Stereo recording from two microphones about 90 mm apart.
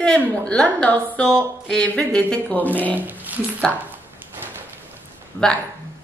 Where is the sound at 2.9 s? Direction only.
20° right (ahead or behind).